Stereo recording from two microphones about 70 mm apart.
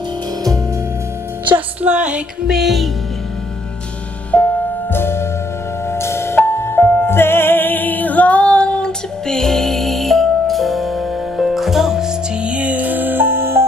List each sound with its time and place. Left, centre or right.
1.5 s music: centre
2.5 s music: centre
4.3 s music: centre
4.9 s music: left; by 13.7 s right